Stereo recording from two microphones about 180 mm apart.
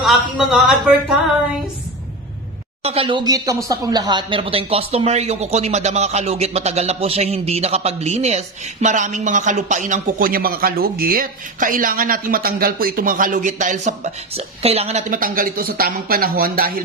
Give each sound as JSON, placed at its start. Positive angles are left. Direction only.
{"t": 0.0, "sound": "speech", "side_deg": 0}
{"t": 2.8, "sound": "a woman's voice", "side_deg": -35}